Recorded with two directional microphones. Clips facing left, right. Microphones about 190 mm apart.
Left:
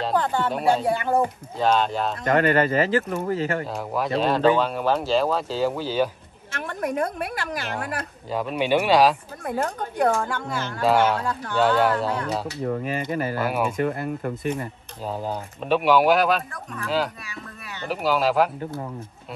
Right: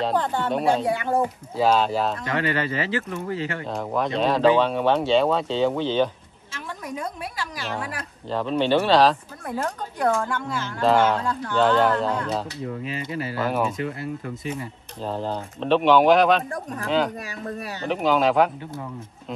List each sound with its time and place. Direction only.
0.0 s speech: centre (ahead or behind)
2.2 s speech: 50° left (ahead or behind)
3.7 s speech: 5° left (ahead or behind)
6.5 s a woman's voice: 60° left (ahead or behind)
8.3 s speech: 10° left (ahead or behind)
10.8 s speech: 10° left (ahead or behind)
12.6 s speech: 50° left (ahead or behind)
13.4 s speech: 10° left (ahead or behind)
13.7 s speech: 55° left (ahead or behind)
15.0 s speech: 10° left (ahead or behind)
17.8 s speech: 5° left (ahead or behind)